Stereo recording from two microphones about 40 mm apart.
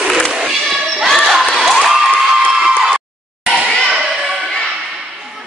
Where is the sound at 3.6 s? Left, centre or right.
Centre.